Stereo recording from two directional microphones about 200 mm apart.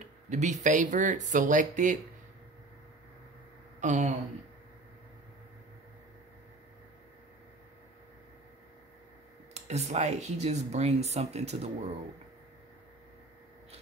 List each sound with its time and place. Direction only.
0.3 s speech: 35° right (ahead or behind)
3.8 s speech: 40° right (ahead or behind)
9.5 s speech: 35° right (ahead or behind)